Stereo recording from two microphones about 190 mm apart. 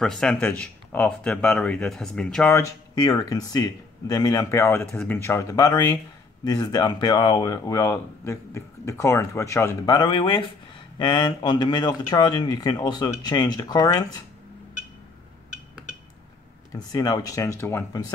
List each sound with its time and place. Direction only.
0.0 s speech: 5° left (ahead or behind)
16.7 s speech: 20° left (ahead or behind)